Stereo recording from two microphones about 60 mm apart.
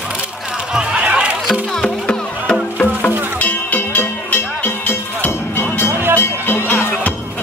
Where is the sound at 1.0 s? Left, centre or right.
Right.